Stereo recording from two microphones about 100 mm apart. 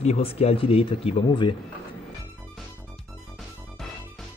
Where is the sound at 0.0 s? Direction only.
80° left.